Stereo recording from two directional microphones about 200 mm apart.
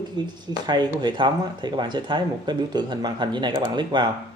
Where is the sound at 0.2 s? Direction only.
20° right (ahead or behind).